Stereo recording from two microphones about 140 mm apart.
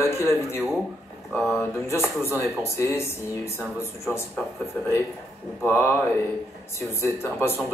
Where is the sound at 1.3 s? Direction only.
Centre (ahead or behind).